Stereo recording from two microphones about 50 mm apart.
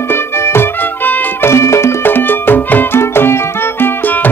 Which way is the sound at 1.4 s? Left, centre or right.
Left.